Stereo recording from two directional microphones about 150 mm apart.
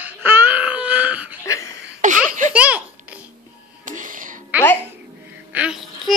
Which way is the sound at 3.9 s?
60° right (ahead or behind).